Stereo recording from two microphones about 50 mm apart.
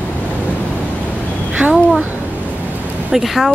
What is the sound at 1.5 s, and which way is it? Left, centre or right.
Speech, centre.